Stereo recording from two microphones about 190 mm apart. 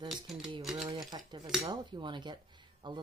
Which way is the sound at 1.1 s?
20° right (ahead or behind).